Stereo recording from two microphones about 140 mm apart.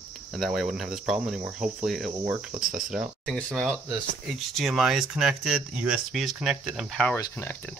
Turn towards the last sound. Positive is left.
turn(degrees=15)  # may be behind; listen again after turning